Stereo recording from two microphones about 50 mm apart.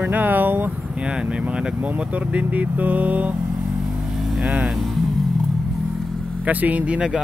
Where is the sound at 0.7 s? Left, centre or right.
Right.